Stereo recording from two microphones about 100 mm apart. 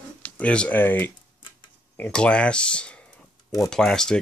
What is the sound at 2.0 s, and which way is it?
Speech, 10° left (ahead or behind).